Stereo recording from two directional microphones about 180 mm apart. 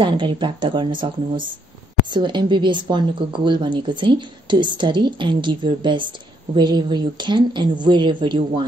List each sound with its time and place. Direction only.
0.0 s speech: 25° right (ahead or behind)